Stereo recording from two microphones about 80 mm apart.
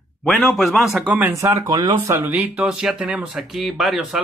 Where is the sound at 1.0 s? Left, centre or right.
Right.